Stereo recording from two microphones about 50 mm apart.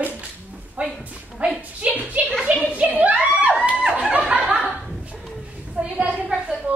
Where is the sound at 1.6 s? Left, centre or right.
Right.